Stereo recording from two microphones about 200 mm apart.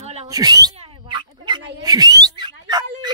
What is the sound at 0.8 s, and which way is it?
Fowl, 25° right (ahead or behind).